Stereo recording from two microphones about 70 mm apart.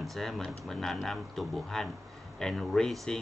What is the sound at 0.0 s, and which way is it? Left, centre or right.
Speech, centre.